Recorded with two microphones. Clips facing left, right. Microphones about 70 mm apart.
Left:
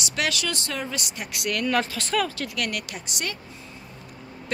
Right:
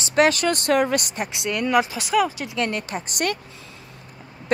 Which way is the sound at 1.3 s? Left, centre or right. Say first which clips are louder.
Right 4 dB; right.